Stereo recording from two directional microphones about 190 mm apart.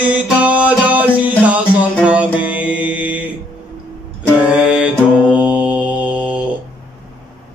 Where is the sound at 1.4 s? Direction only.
5° right (ahead or behind).